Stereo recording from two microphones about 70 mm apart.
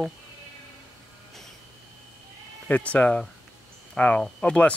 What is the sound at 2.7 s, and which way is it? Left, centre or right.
Speech, left.